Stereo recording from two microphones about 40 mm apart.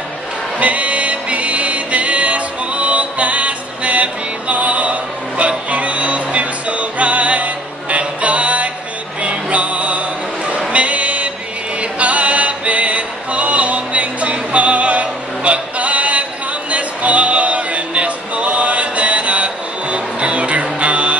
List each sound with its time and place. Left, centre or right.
0.6 s music: right